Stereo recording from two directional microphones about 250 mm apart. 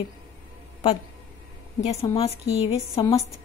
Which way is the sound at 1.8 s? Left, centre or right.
Left.